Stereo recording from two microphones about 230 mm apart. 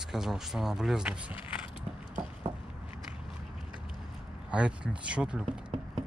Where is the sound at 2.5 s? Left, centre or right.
Right.